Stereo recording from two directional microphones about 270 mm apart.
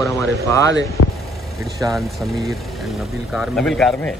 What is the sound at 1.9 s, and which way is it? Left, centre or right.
Speech, centre.